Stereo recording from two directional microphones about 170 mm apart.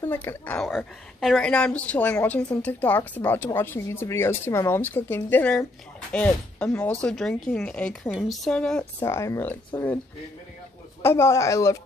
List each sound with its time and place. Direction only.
0.0 s a woman's voice: 15° left (ahead or behind)
0.7 s a woman's voice: centre (ahead or behind)
9.0 s a woman's voice: 15° left (ahead or behind)
11.0 s a woman's voice: 15° left (ahead or behind)